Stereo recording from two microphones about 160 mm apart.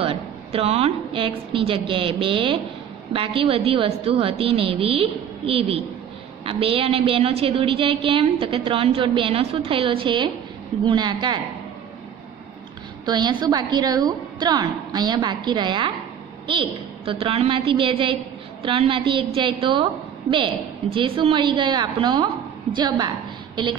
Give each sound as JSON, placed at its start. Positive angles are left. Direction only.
{"t": 0.0, "sound": "a woman's voice", "side_deg": -35}
{"t": 13.0, "sound": "a woman's voice", "side_deg": -25}